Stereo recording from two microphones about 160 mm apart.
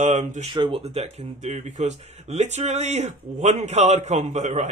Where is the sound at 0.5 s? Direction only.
30° right (ahead or behind).